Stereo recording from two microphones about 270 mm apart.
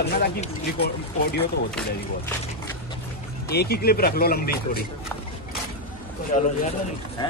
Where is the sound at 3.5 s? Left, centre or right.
Left.